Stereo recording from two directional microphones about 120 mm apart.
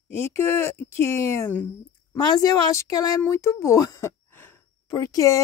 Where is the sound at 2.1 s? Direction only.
35° left (ahead or behind).